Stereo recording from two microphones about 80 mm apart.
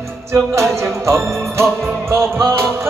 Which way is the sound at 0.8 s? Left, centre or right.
Right.